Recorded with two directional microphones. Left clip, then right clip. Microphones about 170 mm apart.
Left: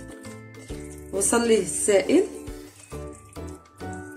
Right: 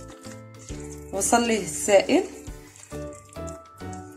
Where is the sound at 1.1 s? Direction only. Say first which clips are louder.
Left 1 dB; 30° right (ahead or behind).